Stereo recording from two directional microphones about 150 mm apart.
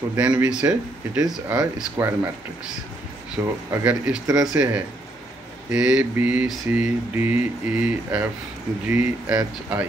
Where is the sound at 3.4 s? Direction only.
20° right (ahead or behind).